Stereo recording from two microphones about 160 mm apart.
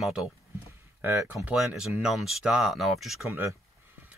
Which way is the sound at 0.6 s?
15° right (ahead or behind).